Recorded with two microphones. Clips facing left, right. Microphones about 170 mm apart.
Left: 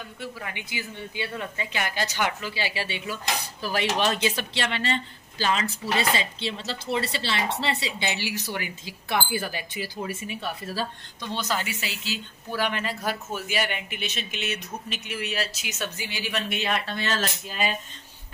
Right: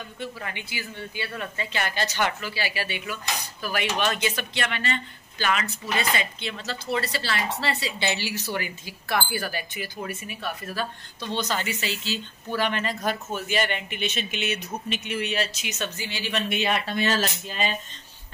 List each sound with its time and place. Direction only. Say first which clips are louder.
0.2 s a woman's voice: right 2 dB; 10° left (ahead or behind); by 10.9 s 30° left (ahead or behind)
11.1 s speech: right 1 dB; 5° left (ahead or behind)
16.9 s speech: right 4 dB; 10° right (ahead or behind)
17.5 s a woman's voice: even; 10° left (ahead or behind)